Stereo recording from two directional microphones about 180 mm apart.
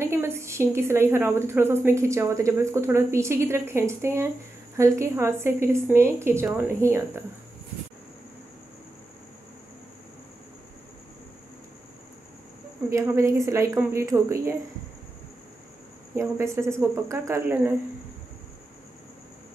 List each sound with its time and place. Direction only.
0.0 s a woman's voice: 15° right (ahead or behind)
12.9 s a woman's voice: 15° right (ahead or behind)
16.2 s a woman's voice: 15° right (ahead or behind)